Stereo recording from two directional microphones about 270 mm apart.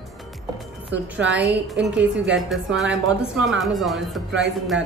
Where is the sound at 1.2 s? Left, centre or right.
Right.